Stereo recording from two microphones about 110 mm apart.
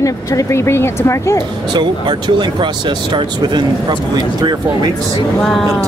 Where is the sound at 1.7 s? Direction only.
45° right (ahead or behind).